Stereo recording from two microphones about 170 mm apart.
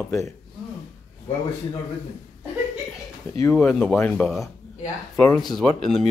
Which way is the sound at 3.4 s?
5° left (ahead or behind).